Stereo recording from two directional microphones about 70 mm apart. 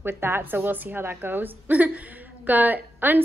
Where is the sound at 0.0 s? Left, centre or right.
Right.